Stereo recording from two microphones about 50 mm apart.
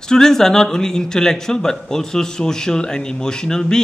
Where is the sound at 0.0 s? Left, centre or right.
Centre.